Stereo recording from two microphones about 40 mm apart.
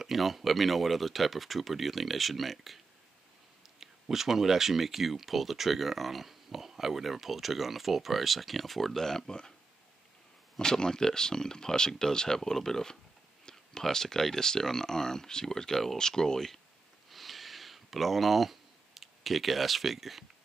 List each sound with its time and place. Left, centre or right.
0.0 s speech: centre
3.8 s speech: centre
10.6 s speech: centre
17.1 s a sound: centre